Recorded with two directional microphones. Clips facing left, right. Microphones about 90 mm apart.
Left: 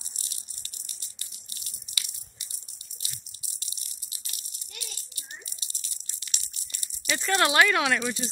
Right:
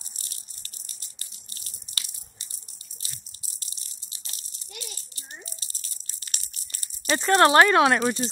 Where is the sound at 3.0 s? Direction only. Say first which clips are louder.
Even; 35° right (ahead or behind).